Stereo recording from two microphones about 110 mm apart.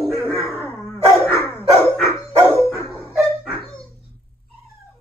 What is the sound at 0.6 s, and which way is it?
Dog, 20° left (ahead or behind).